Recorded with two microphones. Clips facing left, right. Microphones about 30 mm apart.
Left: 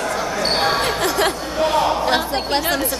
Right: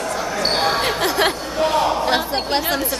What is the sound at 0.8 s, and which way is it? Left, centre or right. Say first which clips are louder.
Music: even; centre.